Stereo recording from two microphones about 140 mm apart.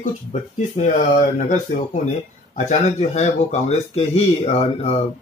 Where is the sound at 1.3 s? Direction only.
65° left (ahead or behind).